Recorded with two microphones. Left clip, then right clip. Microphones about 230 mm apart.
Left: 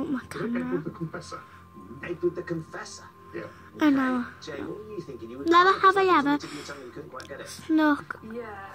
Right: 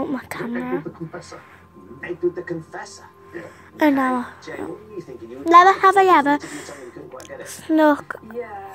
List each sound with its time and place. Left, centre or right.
0.0 s a child's voice: centre
2.0 s speech: left
3.7 s a child's voice: centre
5.5 s a child's voice: centre